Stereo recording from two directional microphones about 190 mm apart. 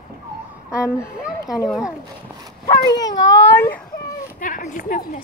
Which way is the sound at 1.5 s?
Centre (ahead or behind).